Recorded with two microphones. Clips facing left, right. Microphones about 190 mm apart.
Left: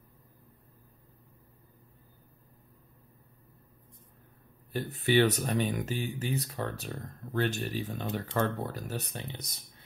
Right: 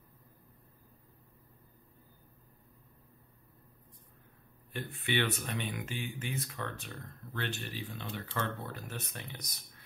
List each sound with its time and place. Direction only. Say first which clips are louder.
4.7 s speech: left 8 dB; 40° left (ahead or behind)